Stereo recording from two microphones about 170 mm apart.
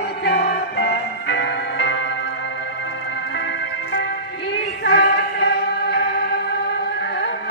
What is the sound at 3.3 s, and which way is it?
Music, 90° left.